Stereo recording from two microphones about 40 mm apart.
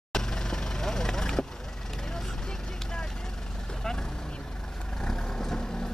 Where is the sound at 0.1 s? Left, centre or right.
Centre.